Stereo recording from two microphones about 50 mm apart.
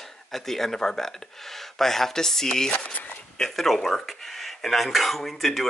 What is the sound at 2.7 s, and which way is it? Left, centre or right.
Speech, left.